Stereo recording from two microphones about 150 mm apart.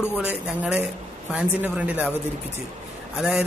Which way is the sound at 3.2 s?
5° right (ahead or behind).